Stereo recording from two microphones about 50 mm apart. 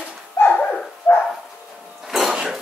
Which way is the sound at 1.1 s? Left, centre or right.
Left.